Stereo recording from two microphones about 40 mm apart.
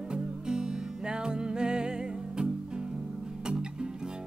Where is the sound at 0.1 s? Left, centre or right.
Centre.